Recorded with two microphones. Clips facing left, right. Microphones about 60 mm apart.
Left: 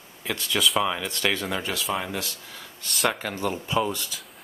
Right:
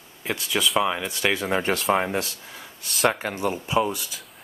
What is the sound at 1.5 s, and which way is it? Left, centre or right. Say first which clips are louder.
Speech: right 6 dB; right.